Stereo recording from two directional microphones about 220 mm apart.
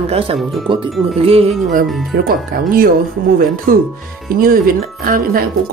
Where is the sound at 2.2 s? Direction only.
40° right (ahead or behind).